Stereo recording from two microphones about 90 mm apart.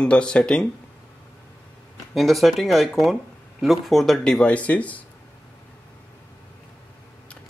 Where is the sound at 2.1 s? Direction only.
Centre (ahead or behind); by 5.0 s 15° left (ahead or behind).